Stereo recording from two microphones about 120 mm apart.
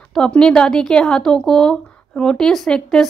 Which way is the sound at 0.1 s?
5° left (ahead or behind).